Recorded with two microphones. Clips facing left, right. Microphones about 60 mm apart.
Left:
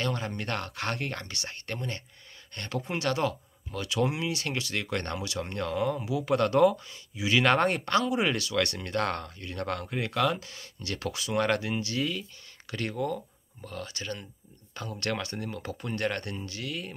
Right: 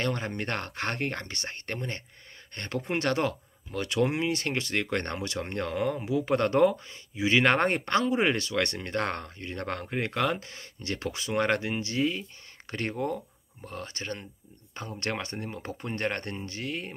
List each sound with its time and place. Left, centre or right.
0.0 s speech: right